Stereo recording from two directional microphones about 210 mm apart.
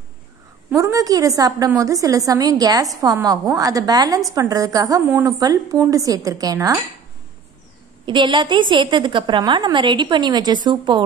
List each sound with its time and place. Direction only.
0.7 s a woman's voice: 15° right (ahead or behind)
8.0 s a woman's voice: 20° right (ahead or behind)